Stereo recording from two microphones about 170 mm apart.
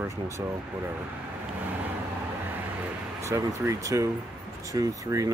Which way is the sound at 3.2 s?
20° right (ahead or behind).